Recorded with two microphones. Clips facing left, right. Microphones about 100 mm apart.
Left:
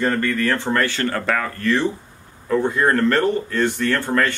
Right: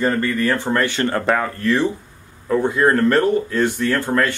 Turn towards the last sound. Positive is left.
turn(degrees=-10)  # may be behind; listen again after turning